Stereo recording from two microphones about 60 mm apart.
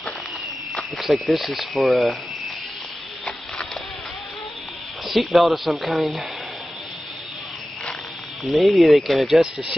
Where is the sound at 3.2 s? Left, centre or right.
Centre.